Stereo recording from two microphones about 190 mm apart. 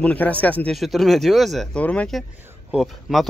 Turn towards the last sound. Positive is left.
turn(degrees=-5)  # may be behind; listen again after turning